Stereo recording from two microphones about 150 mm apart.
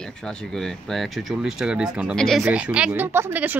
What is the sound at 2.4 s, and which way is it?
Speech, 10° right (ahead or behind).